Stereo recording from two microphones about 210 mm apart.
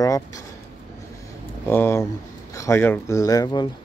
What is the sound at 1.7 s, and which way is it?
Speech, 10° left (ahead or behind).